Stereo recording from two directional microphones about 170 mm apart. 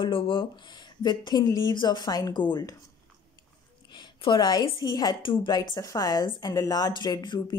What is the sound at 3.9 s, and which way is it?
Speech, 25° left (ahead or behind).